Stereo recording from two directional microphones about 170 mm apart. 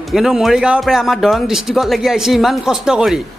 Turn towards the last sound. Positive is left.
turn(degrees=0)  # may be behind; listen again after turning